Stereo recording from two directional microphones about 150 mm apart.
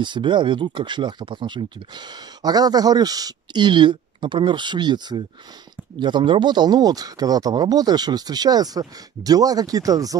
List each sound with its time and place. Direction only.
0.0 s speech: 30° right (ahead or behind)